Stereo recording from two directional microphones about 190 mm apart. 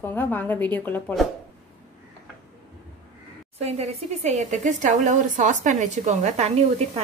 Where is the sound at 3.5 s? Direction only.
35° right (ahead or behind).